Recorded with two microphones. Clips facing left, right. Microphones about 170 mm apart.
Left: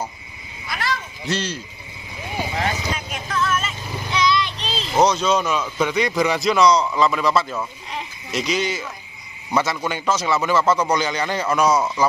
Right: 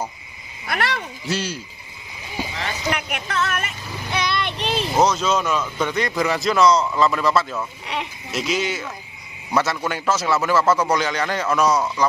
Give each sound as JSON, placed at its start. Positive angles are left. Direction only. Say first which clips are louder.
{"t": 0.7, "sound": "speech", "louder": "right 2 dB", "side_deg": -65}
{"t": 1.2, "sound": "speech", "louder": "left 1 dB", "side_deg": -10}
{"t": 2.9, "sound": "vehicle", "louder": "right 2 dB", "side_deg": -70}
{"t": 4.9, "sound": "a man's voice", "louder": "left 2 dB", "side_deg": 0}